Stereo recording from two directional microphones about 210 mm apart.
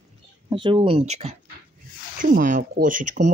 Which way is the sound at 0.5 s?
25° right (ahead or behind).